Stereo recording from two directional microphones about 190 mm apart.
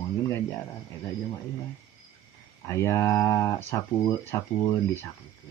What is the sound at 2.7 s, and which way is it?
Speech, 15° left (ahead or behind).